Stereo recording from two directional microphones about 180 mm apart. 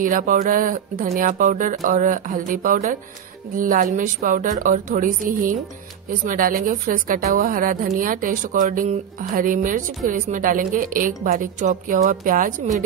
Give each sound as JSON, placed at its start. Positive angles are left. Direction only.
{"t": 0.0, "sound": "speech", "side_deg": -50}